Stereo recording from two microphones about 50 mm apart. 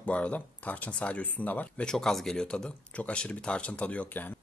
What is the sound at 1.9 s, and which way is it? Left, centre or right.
Speech, centre.